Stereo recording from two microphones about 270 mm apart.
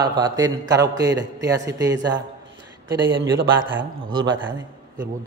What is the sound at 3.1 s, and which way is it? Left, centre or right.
Speech, right.